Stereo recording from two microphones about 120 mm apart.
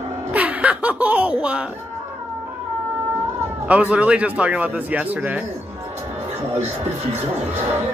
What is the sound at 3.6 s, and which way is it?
Speech, 10° right (ahead or behind).